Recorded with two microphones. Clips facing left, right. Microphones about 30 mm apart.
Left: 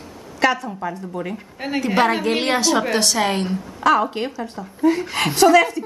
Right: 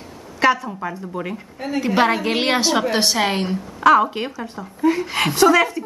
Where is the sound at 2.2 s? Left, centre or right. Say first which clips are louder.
Even; centre.